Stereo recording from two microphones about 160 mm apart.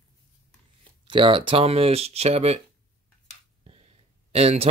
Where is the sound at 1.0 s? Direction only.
30° right (ahead or behind).